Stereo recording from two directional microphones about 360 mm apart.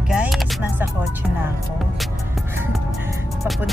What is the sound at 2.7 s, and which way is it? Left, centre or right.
Music, centre.